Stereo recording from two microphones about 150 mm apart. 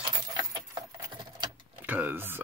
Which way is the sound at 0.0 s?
25° right (ahead or behind).